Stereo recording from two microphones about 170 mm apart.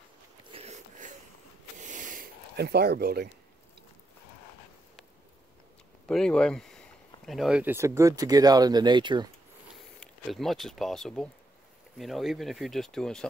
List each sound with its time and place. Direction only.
0.5 s a sound: 40° right (ahead or behind)
2.5 s speech: 70° right (ahead or behind)
6.0 s speech: 5° left (ahead or behind); by 9.3 s 25° right (ahead or behind)
9.9 s speech: centre (ahead or behind)